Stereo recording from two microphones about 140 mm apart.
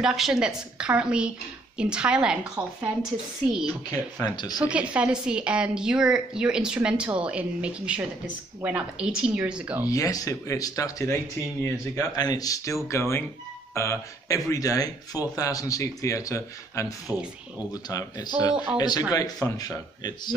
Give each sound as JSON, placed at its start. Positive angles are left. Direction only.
{"t": 0.0, "sound": "a woman's voice", "side_deg": -5}
{"t": 4.2, "sound": "speech", "side_deg": 30}
{"t": 4.6, "sound": "a woman's voice", "side_deg": -10}
{"t": 9.8, "sound": "speech", "side_deg": 25}
{"t": 12.2, "sound": "speech", "side_deg": 30}
{"t": 17.1, "sound": "speech", "side_deg": -20}
{"t": 17.8, "sound": "speech", "side_deg": 30}